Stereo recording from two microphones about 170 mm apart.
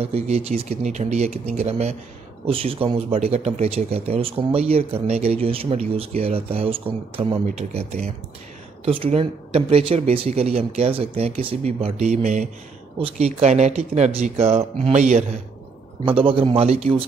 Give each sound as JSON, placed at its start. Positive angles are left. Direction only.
{"t": 0.0, "sound": "speech", "side_deg": -35}
{"t": 16.1, "sound": "speech", "side_deg": -30}